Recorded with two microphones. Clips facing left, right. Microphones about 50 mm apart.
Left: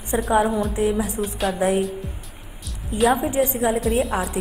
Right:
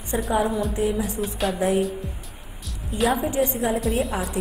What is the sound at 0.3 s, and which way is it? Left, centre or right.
Speech, centre.